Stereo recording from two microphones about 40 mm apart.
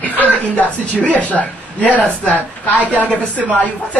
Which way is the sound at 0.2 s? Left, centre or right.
Left.